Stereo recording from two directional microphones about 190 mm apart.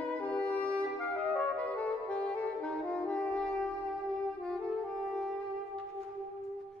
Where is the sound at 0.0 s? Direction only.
5° left (ahead or behind).